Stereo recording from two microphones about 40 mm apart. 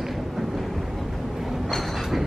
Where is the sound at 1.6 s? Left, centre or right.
Centre.